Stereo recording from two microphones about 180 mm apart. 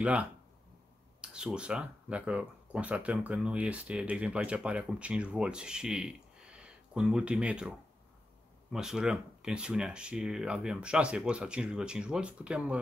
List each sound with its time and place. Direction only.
0.0 s speech: 5° right (ahead or behind)
8.7 s speech: 5° right (ahead or behind)